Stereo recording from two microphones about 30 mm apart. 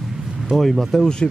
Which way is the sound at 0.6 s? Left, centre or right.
Centre.